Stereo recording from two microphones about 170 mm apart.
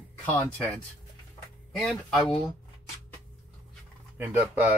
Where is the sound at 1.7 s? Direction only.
5° left (ahead or behind).